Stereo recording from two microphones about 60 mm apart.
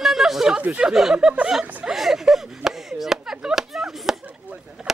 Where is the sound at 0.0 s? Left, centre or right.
Centre.